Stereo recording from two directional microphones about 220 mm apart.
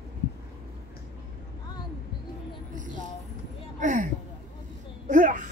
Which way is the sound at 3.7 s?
35° right (ahead or behind).